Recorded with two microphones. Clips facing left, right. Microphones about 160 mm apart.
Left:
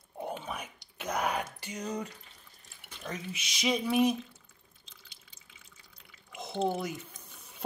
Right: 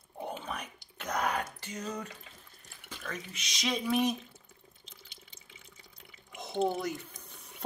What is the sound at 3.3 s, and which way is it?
Speech, 5° left (ahead or behind).